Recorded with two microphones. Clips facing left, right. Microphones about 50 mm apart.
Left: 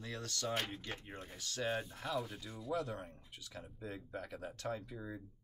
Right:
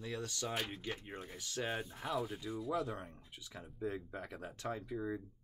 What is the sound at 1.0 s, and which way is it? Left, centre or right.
Speech, centre.